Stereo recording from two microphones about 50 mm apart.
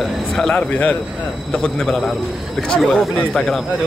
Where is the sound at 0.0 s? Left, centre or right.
Centre.